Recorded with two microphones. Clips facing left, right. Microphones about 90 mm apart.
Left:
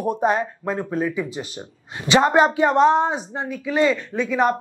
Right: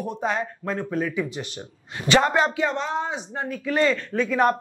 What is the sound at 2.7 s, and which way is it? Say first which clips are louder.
Speech: left 11 dB; 60° left (ahead or behind).